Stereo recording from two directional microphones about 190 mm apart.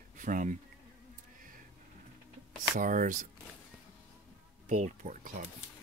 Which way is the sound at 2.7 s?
45° right (ahead or behind).